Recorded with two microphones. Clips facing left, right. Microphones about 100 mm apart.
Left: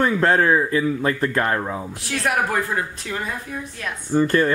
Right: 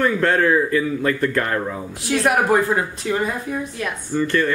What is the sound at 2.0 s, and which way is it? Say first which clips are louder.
Speech: right 5 dB; 20° right (ahead or behind).